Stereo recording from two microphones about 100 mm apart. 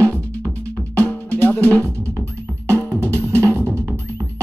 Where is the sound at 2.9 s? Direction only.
30° right (ahead or behind).